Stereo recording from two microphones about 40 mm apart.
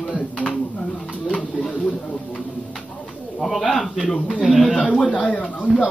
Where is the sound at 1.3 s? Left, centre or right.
Centre.